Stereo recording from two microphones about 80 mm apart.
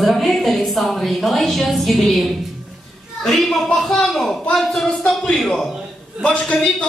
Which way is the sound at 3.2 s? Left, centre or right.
Centre.